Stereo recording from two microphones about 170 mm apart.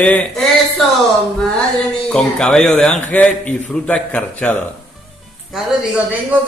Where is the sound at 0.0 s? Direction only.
10° left (ahead or behind).